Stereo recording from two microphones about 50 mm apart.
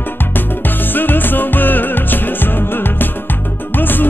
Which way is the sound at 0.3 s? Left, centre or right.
Left.